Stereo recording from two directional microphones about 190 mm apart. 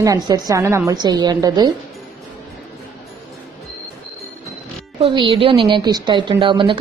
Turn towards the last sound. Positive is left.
turn(degrees=-25)  # may be behind; listen again after turning